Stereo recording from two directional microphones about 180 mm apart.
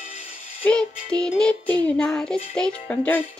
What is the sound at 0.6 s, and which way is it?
Speech, 10° left (ahead or behind).